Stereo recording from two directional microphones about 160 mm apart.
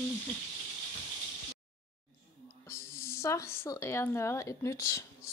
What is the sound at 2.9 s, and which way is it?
A woman's voice, 15° left (ahead or behind).